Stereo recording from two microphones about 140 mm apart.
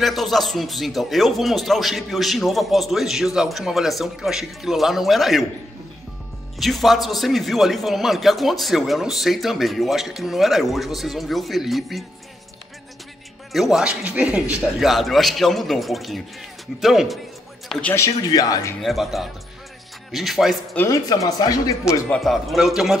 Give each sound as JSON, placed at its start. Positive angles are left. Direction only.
{"t": 0.0, "sound": "speech", "side_deg": 0}
{"t": 6.6, "sound": "speech", "side_deg": 0}
{"t": 13.5, "sound": "speech", "side_deg": 0}
{"t": 17.9, "sound": "speech", "side_deg": 25}
{"t": 18.8, "sound": "speech", "side_deg": 0}
{"t": 20.7, "sound": "speech", "side_deg": 15}
{"t": 21.1, "sound": "speech", "side_deg": 30}
{"t": 22.1, "sound": "speech", "side_deg": 0}